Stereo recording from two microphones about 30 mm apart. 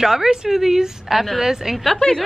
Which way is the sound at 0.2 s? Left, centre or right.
Centre.